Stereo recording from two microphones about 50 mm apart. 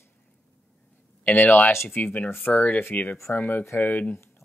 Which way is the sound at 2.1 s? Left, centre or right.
Left.